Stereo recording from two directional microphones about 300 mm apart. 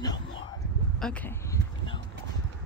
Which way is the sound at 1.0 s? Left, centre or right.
Centre.